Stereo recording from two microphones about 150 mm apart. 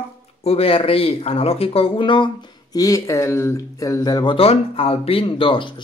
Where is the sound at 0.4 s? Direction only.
40° left (ahead or behind).